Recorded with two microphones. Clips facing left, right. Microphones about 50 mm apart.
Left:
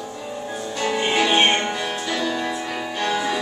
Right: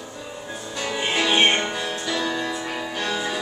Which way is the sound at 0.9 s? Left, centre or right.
Centre.